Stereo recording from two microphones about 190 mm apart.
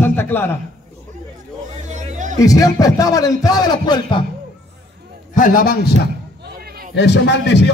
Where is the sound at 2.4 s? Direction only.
20° left (ahead or behind).